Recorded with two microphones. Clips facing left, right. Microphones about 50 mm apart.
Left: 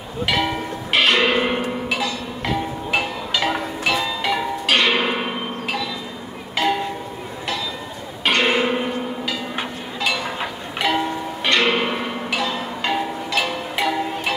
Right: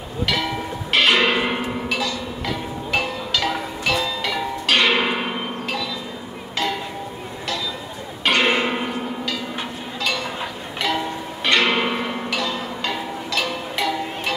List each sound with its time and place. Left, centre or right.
0.3 s a sound: centre
1.0 s a sound: centre
1.9 s music: centre
4.7 s music: centre
6.5 s music: centre
8.3 s livestock: centre
9.6 s a sound: centre
11.4 s music: centre
12.3 s music: centre